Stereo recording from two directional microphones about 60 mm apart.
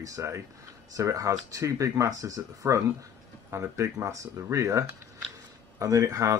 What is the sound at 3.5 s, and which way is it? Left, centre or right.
Speech, right.